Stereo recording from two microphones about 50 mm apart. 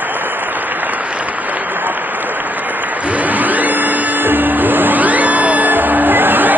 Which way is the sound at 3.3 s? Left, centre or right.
Right.